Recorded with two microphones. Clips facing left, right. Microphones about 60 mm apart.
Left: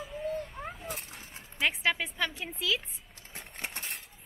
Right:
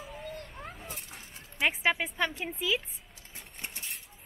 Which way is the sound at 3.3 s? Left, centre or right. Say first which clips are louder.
Left 4 dB; left.